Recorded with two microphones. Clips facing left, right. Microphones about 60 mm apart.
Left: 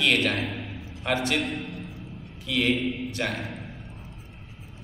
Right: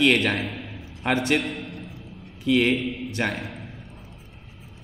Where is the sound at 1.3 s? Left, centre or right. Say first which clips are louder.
Right 1 dB; centre.